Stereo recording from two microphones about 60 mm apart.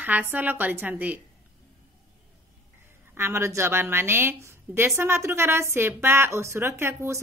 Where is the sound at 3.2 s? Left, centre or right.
Right.